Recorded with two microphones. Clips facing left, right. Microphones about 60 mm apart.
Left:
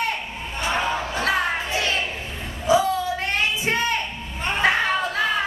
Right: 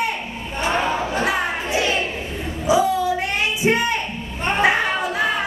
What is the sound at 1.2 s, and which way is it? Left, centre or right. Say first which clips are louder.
Crowd: right 1 dB; centre.